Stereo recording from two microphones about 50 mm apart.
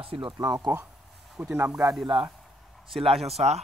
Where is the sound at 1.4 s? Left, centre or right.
Right.